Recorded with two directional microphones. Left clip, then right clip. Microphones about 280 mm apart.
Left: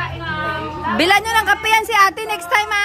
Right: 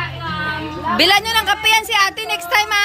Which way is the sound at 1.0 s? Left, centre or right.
Centre.